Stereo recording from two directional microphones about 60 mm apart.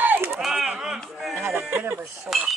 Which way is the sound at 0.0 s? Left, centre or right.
Right.